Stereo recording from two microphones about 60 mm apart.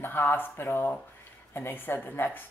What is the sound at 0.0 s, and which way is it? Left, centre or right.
Speech, left.